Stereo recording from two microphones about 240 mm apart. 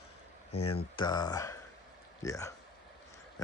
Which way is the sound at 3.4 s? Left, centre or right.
Centre.